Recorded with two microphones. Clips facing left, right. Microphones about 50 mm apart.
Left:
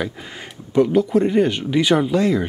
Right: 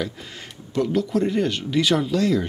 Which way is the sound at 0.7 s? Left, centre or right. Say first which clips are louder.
Left 6 dB; centre.